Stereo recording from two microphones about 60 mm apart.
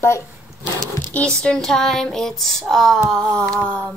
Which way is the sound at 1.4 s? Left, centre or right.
Centre.